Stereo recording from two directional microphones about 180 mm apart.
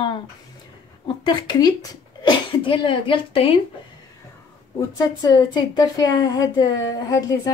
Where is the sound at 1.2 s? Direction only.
25° left (ahead or behind).